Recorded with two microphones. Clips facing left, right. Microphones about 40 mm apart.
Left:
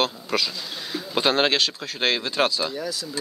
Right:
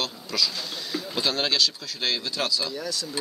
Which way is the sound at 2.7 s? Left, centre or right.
Centre.